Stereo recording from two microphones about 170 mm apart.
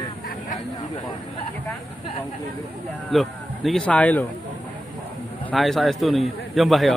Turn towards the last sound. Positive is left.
turn(degrees=0)  # may be behind; listen again after turning